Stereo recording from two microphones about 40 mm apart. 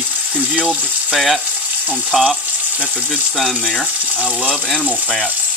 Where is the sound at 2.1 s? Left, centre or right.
Centre.